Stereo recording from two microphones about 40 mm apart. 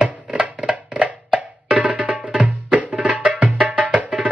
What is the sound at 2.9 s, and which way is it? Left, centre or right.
Music, right.